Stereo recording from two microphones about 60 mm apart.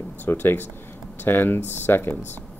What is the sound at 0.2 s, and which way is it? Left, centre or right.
Speech, left.